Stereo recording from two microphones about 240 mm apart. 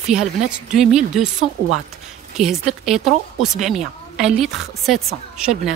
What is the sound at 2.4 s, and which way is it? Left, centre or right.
A woman's voice, centre.